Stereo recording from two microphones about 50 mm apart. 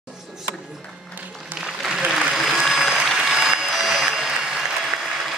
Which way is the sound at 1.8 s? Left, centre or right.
Centre.